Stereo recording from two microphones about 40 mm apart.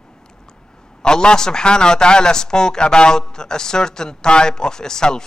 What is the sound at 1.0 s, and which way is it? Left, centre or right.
A man's voice, centre.